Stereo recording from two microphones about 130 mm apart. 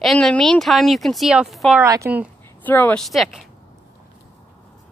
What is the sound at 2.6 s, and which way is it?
Speech, 15° left (ahead or behind).